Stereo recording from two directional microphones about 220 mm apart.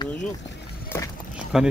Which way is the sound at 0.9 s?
10° left (ahead or behind).